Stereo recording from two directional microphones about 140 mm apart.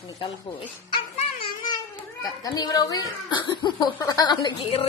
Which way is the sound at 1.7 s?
25° left (ahead or behind).